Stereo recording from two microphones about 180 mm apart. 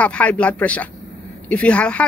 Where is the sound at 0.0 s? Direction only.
5° left (ahead or behind).